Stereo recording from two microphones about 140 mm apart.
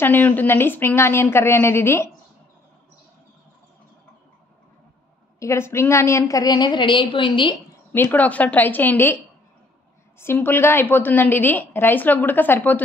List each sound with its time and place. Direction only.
0.0 s a woman's voice: 15° left (ahead or behind)
5.4 s a woman's voice: 20° left (ahead or behind); by 7.5 s 35° left (ahead or behind)
7.9 s a woman's voice: 15° left (ahead or behind)